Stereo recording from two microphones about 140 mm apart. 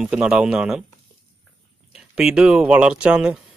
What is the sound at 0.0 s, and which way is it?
Speech, 5° right (ahead or behind).